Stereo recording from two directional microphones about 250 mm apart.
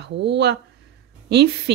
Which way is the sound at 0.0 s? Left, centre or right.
Right.